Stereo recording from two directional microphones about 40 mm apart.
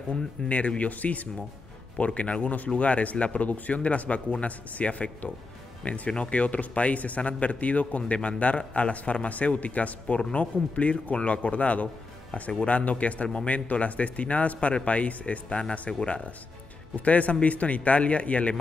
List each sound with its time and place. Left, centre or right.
0.1 s a man's voice: left
17.0 s a man's voice: left